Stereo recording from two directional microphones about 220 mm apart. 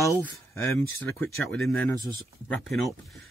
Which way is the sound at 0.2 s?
10° left (ahead or behind).